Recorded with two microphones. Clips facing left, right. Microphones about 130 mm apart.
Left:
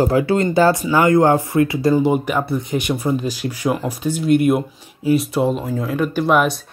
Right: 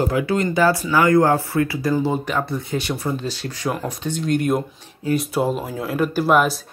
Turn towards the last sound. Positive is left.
turn(degrees=0)  # may be behind; listen again after turning